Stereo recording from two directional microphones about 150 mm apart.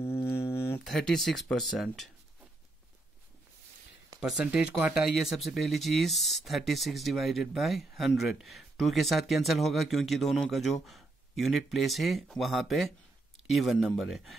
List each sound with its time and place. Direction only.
0.0 s a sound: 15° left (ahead or behind)
0.8 s speech: centre (ahead or behind)
4.2 s speech: 5° right (ahead or behind)